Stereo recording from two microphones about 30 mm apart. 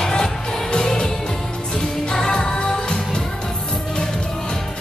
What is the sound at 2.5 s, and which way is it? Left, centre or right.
Music, left.